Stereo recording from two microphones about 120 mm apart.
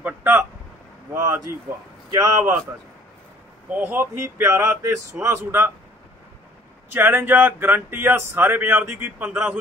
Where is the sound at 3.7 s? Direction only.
15° right (ahead or behind).